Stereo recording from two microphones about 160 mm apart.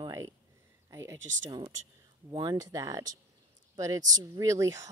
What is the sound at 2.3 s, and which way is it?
Speech, 20° right (ahead or behind).